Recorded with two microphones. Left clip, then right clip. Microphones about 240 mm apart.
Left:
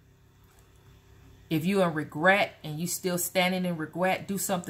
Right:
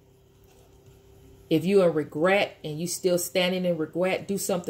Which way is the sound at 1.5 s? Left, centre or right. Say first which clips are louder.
Right 6 dB; left.